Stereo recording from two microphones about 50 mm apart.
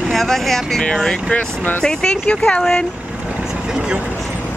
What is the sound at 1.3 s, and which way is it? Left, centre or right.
Speech, left.